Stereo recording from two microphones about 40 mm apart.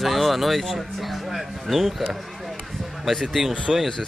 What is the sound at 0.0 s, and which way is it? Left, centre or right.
Speech, centre.